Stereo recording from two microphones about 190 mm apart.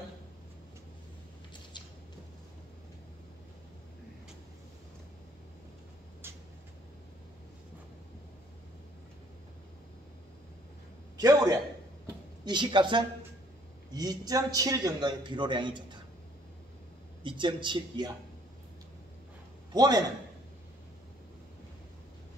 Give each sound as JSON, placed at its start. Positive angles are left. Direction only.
{"t": 6.2, "sound": "a sound", "side_deg": -10}
{"t": 11.1, "sound": "a man's voice", "side_deg": -20}
{"t": 17.2, "sound": "a man's voice", "side_deg": -25}
{"t": 19.7, "sound": "a man's voice", "side_deg": -20}